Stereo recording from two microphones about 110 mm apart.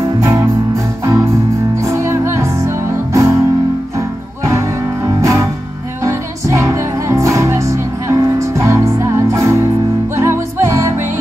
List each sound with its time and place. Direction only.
0.2 s music: 30° right (ahead or behind)
4.5 s music: 30° right (ahead or behind)